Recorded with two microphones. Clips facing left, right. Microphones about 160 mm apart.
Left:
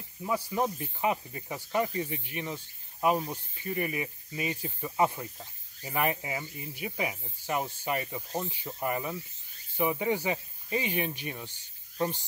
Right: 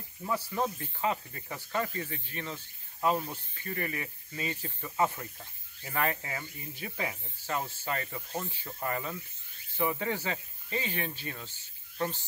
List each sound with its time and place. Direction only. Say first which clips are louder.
0.2 s snake: left 2 dB; 15° left (ahead or behind)